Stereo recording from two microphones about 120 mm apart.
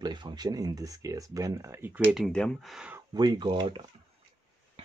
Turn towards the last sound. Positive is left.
turn(degrees=-40)  # may be behind; listen again after turning